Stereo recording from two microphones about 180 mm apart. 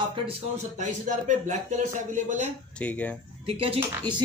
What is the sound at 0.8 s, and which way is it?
A woman's voice, 40° right (ahead or behind).